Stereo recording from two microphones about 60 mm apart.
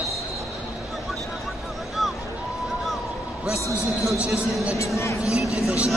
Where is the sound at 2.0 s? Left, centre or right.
Centre.